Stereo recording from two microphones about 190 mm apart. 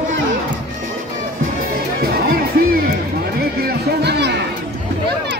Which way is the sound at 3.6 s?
60° right (ahead or behind).